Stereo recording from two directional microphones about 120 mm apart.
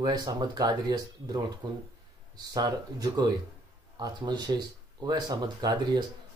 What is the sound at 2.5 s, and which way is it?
Speech, 35° right (ahead or behind).